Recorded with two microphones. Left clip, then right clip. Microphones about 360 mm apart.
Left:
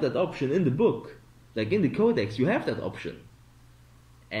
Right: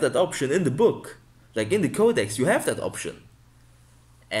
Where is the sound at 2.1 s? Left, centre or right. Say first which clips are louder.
Right 3 dB; centre.